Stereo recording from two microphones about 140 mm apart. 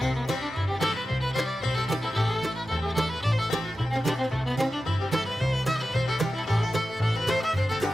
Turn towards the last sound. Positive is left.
turn(degrees=0)  # may be behind; listen again after turning